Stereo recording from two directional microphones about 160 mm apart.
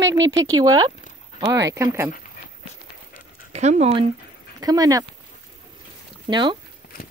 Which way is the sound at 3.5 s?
45° right (ahead or behind).